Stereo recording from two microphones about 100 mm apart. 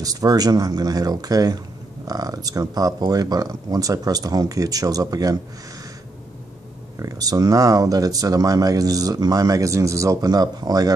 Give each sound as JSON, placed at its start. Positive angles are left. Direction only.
{"t": 0.0, "sound": "speech", "side_deg": -40}
{"t": 7.0, "sound": "speech", "side_deg": -35}